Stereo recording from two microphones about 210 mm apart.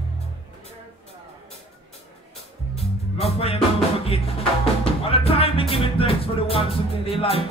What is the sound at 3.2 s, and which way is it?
Music, 30° left (ahead or behind).